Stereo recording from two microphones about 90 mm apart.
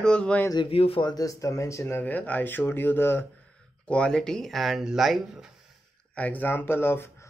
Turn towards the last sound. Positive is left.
turn(degrees=25)  # may be behind; listen again after turning